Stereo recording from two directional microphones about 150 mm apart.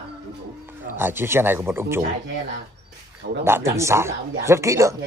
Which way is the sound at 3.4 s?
15° right (ahead or behind).